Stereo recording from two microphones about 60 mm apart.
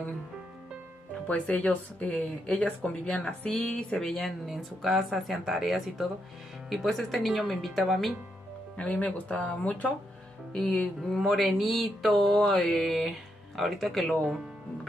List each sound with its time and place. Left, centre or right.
1.5 s speech: left
4.5 s mantra: centre
8.7 s speech: left
10.5 s speech: centre
11.1 s mantra: centre